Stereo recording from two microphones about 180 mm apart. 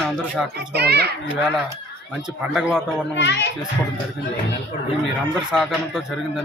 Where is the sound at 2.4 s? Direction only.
5° right (ahead or behind).